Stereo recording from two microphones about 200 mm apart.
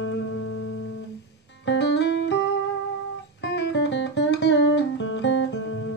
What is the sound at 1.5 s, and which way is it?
Music, 60° left (ahead or behind).